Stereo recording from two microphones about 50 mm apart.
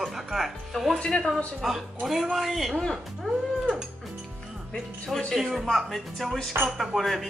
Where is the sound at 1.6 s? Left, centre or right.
Centre.